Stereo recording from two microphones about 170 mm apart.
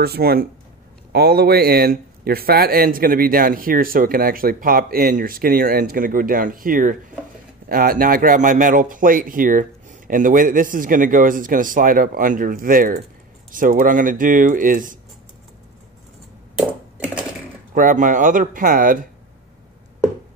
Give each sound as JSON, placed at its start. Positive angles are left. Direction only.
{"t": 0.0, "sound": "speech", "side_deg": -65}
{"t": 17.7, "sound": "speech", "side_deg": -50}